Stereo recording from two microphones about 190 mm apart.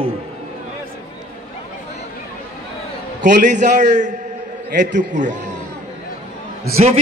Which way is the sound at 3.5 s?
40° right (ahead or behind).